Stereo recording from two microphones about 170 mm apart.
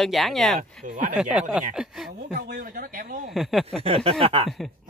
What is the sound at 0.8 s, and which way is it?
Speech, 50° right (ahead or behind).